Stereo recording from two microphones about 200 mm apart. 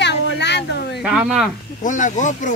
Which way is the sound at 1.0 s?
5° right (ahead or behind).